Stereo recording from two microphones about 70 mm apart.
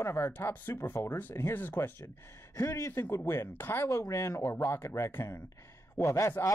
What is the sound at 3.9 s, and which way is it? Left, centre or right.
Speech, left.